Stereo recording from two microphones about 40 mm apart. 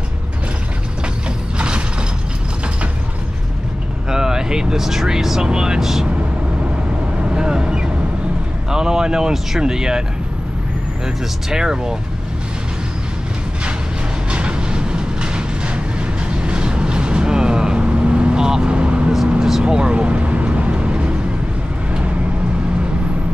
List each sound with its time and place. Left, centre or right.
4.1 s speech: centre
7.2 s vehicle: right
8.6 s speech: centre
11.5 s speech: centre
14.3 s vehicle: right